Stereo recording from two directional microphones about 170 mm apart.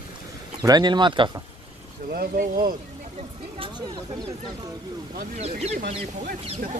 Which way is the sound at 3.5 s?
25° right (ahead or behind).